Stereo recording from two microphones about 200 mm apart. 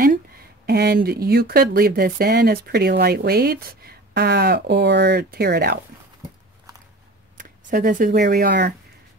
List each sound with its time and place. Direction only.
0.7 s speech: 50° right (ahead or behind)
7.3 s speech: 40° right (ahead or behind)